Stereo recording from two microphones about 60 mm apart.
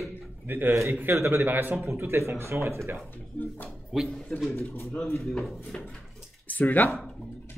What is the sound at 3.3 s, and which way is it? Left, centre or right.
Speech, centre.